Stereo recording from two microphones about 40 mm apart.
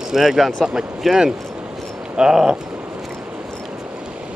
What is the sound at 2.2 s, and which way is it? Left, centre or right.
Speech, centre.